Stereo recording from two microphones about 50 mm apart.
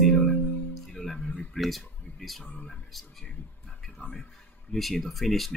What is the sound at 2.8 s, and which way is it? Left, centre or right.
Speech, centre.